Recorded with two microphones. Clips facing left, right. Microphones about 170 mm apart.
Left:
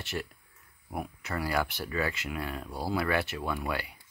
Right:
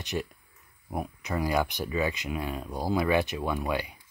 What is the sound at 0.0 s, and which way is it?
Speech, 20° right (ahead or behind).